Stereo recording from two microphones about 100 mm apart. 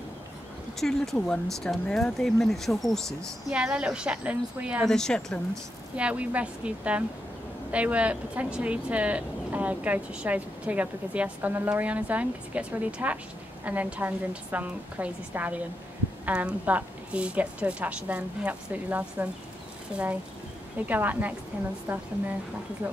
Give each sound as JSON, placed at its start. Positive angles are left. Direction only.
{"t": 0.7, "sound": "speech", "side_deg": 5}
{"t": 3.4, "sound": "speech", "side_deg": -10}
{"t": 4.8, "sound": "speech", "side_deg": 5}
{"t": 5.9, "sound": "speech", "side_deg": -15}